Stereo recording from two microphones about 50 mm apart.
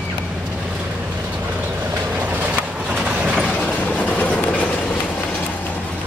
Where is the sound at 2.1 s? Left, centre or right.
Right.